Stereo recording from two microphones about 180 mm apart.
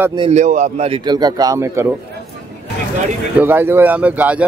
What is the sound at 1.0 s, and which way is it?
Speech, 20° right (ahead or behind).